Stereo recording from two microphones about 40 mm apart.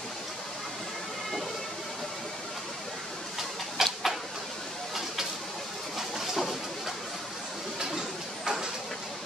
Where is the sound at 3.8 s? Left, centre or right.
Centre.